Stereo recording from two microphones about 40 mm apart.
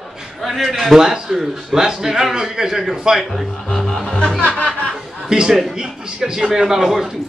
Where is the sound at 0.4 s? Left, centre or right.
Centre.